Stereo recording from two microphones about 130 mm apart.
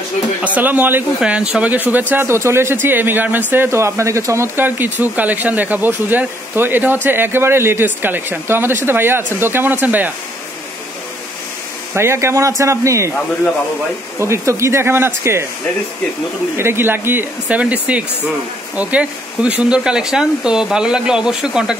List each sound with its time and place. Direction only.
0.6 s speech: 15° right (ahead or behind)
11.9 s speech: 20° right (ahead or behind)
14.2 s speech: 20° right (ahead or behind)
16.5 s speech: 20° right (ahead or behind)